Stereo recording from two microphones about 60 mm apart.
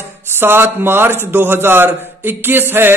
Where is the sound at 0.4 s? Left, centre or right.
Right.